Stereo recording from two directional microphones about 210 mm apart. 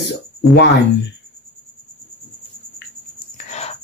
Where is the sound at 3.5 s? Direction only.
30° left (ahead or behind).